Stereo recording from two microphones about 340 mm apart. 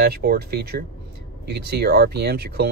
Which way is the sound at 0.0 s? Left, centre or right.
Right.